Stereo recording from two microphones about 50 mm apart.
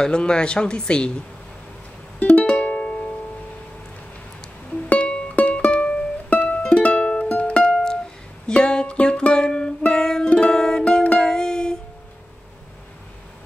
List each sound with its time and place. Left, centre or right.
0.0 s speech: centre
2.1 s music: left
4.8 s music: left
7.7 s music: centre